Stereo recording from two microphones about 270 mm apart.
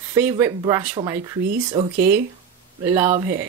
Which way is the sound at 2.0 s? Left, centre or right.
Right.